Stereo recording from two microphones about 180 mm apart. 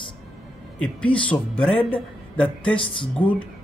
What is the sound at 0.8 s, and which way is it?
Speech, 5° left (ahead or behind).